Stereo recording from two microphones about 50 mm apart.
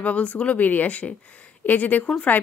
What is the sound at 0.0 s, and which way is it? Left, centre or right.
A woman's voice, left.